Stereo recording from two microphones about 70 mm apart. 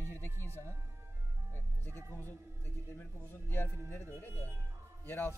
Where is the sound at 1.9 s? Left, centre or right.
Right.